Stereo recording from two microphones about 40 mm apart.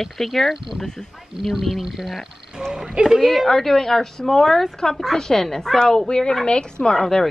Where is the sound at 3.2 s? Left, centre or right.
Centre.